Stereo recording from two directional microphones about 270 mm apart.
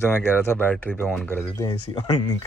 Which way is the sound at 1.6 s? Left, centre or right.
Centre.